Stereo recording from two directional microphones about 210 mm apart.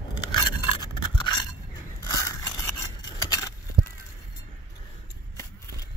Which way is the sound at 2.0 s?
15° left (ahead or behind).